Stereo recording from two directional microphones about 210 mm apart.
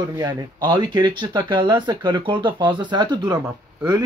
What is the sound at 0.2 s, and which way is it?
Speech, 20° right (ahead or behind).